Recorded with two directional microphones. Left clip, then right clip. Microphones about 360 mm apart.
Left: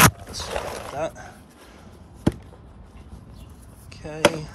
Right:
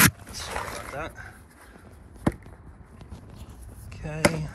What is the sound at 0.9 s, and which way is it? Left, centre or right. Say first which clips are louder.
Speech: left 6 dB; centre.